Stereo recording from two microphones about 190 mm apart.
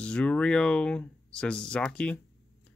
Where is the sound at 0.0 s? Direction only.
5° left (ahead or behind).